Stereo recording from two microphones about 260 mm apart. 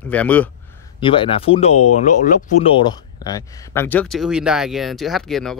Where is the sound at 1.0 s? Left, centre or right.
Centre.